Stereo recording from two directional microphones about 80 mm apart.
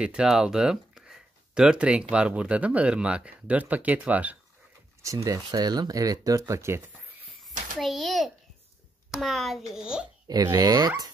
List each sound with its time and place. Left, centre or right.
0.0 s speech: centre
5.0 s speech: right
7.4 s a child's voice: centre
10.2 s speech: right